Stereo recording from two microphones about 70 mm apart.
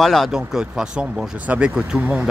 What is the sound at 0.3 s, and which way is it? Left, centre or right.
Speech, centre.